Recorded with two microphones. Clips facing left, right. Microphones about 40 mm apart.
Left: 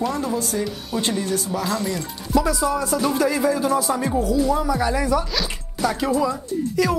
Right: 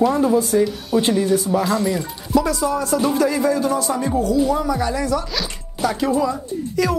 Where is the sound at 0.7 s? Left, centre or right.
Centre.